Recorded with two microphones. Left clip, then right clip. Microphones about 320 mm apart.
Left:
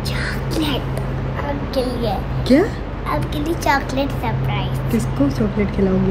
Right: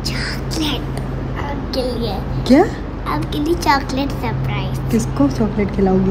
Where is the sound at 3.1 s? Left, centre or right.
Centre.